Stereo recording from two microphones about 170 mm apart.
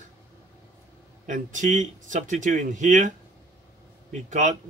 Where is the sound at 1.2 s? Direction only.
50° right (ahead or behind).